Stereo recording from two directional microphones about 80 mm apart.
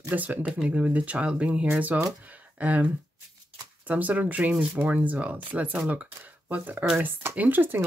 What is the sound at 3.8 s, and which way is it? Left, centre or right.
Speech, centre.